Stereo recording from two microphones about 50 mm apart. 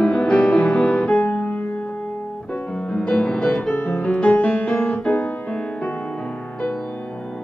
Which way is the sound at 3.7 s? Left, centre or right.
Left.